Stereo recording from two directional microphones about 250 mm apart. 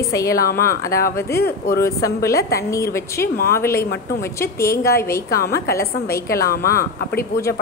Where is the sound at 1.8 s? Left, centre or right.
Centre.